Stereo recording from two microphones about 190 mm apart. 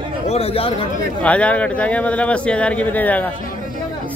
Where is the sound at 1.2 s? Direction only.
5° left (ahead or behind).